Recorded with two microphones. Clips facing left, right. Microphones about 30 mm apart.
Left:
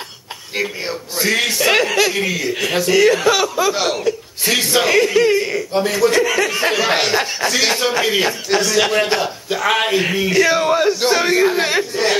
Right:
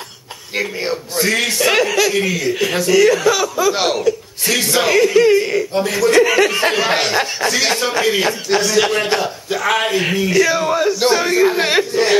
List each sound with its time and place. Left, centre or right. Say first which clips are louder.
0.6 s a man's voice: right 2 dB; centre
3.7 s speech: right 2 dB; centre
4.5 s a man's voice: even; centre
6.2 s speech: right 3 dB; centre
6.6 s a man's voice: right 1 dB; centre
11.9 s a man's voice: right 3 dB; centre